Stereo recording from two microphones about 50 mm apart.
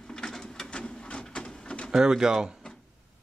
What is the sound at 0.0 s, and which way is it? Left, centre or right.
Printer, centre.